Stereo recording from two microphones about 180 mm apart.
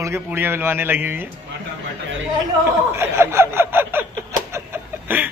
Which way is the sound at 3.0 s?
15° right (ahead or behind).